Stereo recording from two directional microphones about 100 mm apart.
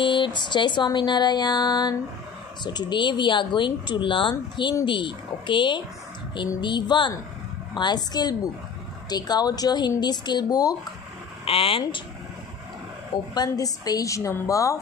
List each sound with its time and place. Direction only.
0.0 s speech: 50° left (ahead or behind)
11.4 s speech: 70° left (ahead or behind)
13.3 s a woman's voice: 40° left (ahead or behind)